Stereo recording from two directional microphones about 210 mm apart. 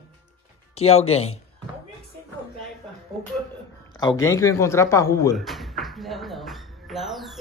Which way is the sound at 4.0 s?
15° left (ahead or behind).